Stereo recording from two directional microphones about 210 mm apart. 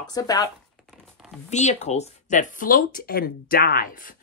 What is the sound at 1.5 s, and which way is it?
Speech, 35° left (ahead or behind).